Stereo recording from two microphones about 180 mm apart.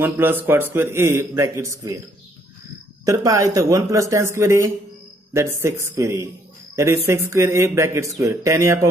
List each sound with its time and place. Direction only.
0.0 s speech: 10° right (ahead or behind)
3.1 s a man's voice: 15° right (ahead or behind)